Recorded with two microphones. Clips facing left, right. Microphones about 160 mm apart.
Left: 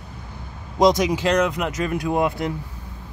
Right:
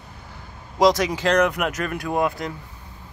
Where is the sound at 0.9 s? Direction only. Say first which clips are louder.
Left 1 dB; 15° left (ahead or behind).